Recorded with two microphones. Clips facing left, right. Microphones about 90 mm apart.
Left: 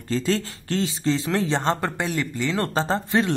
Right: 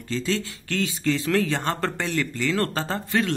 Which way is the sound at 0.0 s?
40° left (ahead or behind).